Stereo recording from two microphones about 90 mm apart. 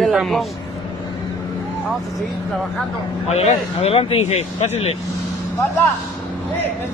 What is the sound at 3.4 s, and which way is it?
Speech, 90° left.